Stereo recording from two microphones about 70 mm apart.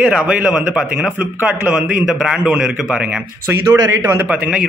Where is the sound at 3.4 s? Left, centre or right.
Right.